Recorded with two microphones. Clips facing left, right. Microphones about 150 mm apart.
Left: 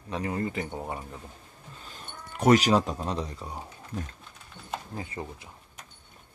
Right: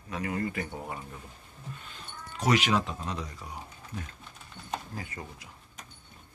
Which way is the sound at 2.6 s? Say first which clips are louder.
Left 4 dB; 35° left (ahead or behind).